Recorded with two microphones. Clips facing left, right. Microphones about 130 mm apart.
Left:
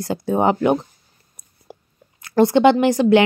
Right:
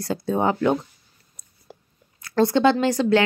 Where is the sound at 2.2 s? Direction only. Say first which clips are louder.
Left 4 dB; 20° left (ahead or behind).